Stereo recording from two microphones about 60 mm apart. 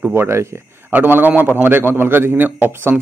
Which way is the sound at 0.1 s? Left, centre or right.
Right.